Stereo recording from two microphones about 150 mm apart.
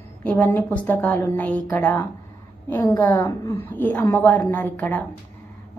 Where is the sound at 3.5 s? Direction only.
15° left (ahead or behind).